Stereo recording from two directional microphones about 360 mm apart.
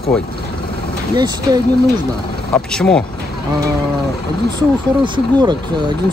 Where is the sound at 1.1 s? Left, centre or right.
Centre.